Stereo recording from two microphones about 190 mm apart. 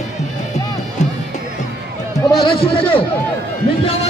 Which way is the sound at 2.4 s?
30° left (ahead or behind).